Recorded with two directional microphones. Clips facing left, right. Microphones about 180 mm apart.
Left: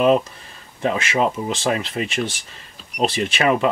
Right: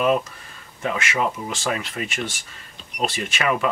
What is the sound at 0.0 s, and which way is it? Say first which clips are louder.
Speech: left 4 dB; 30° left (ahead or behind).